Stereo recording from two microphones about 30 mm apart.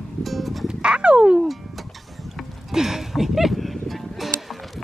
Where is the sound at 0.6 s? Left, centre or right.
Right.